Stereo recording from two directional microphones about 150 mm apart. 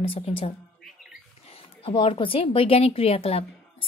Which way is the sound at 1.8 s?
35° left (ahead or behind).